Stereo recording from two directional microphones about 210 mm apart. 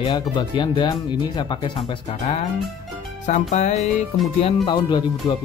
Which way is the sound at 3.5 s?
35° left (ahead or behind).